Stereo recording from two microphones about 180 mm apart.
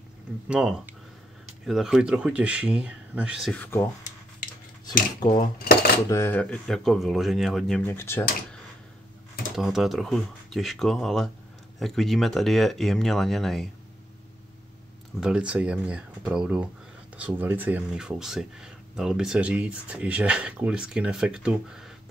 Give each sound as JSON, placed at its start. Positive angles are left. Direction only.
{"t": 0.5, "sound": "speech", "side_deg": -5}
{"t": 5.6, "sound": "dishes", "side_deg": 55}
{"t": 6.0, "sound": "speech", "side_deg": 15}
{"t": 7.8, "sound": "speech", "side_deg": 15}
{"t": 9.6, "sound": "speech", "side_deg": 0}
{"t": 15.1, "sound": "speech", "side_deg": -5}